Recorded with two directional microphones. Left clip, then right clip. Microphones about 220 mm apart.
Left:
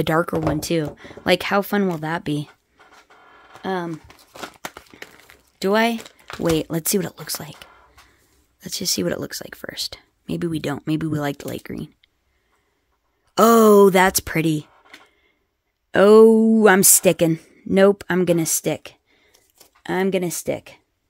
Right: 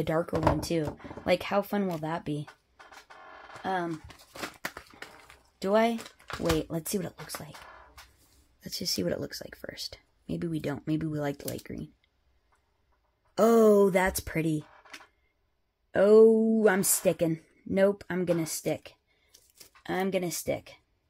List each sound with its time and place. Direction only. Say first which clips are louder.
0.0 s a woman's voice: left 7 dB; 40° left (ahead or behind)
3.6 s a woman's voice: left 5 dB; 45° left (ahead or behind)
4.1 s a sound: left 4 dB; 25° left (ahead or behind)
5.6 s speech: left 6 dB; 40° left (ahead or behind)
6.6 s a woman's voice: left 10 dB; 45° left (ahead or behind)
8.5 s speech: left 8 dB; 35° left (ahead or behind)
13.3 s speech: left 8 dB; 40° left (ahead or behind)
15.9 s a woman's voice: left 8 dB; 45° left (ahead or behind)